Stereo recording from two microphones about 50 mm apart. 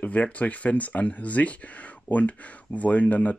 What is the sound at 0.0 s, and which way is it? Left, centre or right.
Speech, left.